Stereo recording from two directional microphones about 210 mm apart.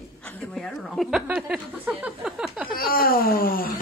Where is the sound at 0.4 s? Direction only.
Centre (ahead or behind).